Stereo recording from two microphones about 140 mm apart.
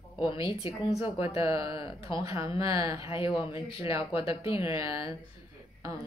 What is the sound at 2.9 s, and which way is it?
Speech, 40° left (ahead or behind).